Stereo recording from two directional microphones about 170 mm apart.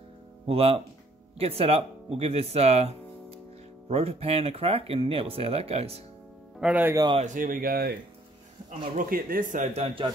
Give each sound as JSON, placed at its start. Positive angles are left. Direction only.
{"t": 0.5, "sound": "speech", "side_deg": -35}
{"t": 6.6, "sound": "speech", "side_deg": -10}
{"t": 7.3, "sound": "a man's voice", "side_deg": -55}
{"t": 9.8, "sound": "speech", "side_deg": -30}